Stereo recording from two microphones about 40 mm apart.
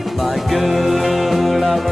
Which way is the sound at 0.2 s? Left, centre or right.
Centre.